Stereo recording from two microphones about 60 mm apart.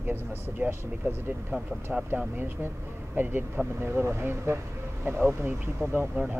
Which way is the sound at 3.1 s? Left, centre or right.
Right.